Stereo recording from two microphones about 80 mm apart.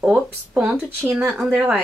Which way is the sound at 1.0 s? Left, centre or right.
Right.